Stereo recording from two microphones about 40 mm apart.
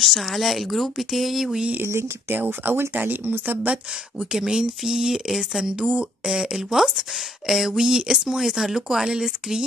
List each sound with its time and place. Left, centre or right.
0.0 s speech: centre
1.8 s speech: right
2.3 s speech: right
2.7 s speech: right
3.0 s speech: right
3.7 s speech: centre